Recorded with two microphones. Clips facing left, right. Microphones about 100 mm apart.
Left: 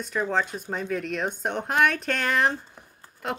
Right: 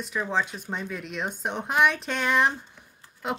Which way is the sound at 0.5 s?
30° left (ahead or behind).